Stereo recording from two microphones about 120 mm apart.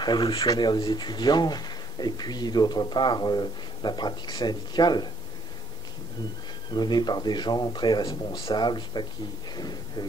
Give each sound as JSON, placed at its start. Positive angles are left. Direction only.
{"t": 0.0, "sound": "speech", "side_deg": 40}
{"t": 6.7, "sound": "speech", "side_deg": 35}